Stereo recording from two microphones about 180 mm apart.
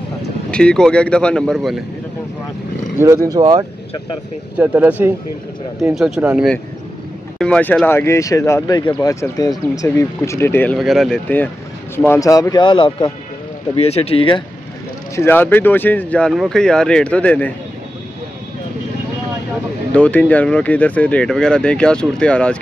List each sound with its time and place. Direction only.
0.5 s speech: 5° left (ahead or behind)
3.0 s speech: 15° right (ahead or behind)
4.6 s speech: 10° right (ahead or behind); by 10.8 s 10° left (ahead or behind)
10.8 s speech: centre (ahead or behind); by 14.4 s 30° left (ahead or behind)
15.1 s speech: 10° left (ahead or behind)
19.9 s speech: 5° left (ahead or behind)